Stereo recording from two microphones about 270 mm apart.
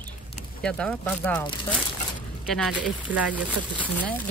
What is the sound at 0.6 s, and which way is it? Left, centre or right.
Speech, centre.